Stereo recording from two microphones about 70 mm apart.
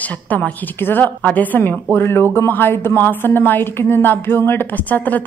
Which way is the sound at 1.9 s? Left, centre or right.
Left.